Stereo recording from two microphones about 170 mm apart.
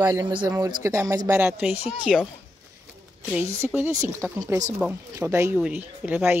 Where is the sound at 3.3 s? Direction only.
10° right (ahead or behind).